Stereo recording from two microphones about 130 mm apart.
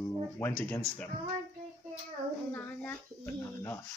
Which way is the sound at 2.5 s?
15° left (ahead or behind).